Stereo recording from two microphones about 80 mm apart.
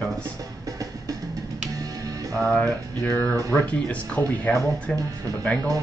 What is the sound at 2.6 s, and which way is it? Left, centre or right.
Speech, centre.